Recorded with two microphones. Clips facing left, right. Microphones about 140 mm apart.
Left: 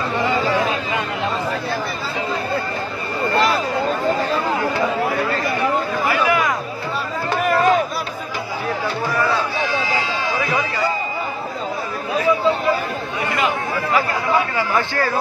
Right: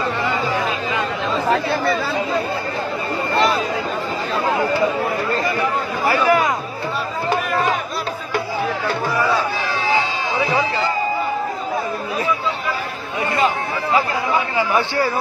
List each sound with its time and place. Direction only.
6.0 s chatter: 35° right (ahead or behind)
9.1 s a sound: 10° right (ahead or behind)
14.6 s speech: 15° right (ahead or behind)